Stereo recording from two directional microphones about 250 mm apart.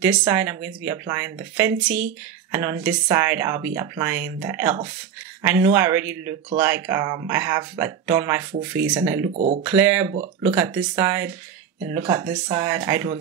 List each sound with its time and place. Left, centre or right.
0.2 s speech: centre
9.3 s speech: right
9.6 s speech: centre